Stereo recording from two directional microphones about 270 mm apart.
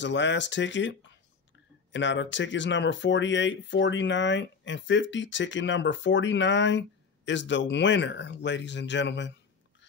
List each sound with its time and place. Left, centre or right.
0.0 s speech: left